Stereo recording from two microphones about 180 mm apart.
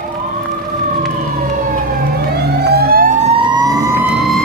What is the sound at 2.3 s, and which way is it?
Vehicle, 65° right (ahead or behind).